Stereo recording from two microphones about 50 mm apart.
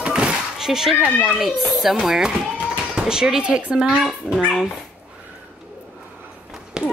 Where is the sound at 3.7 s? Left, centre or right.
Centre.